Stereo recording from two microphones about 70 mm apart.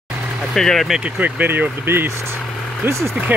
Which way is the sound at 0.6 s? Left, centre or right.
Centre.